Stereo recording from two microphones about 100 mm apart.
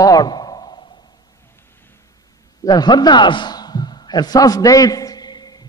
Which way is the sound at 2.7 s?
45° left (ahead or behind).